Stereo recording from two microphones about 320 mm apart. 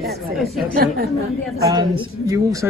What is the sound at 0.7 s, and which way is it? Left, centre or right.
Speech, right.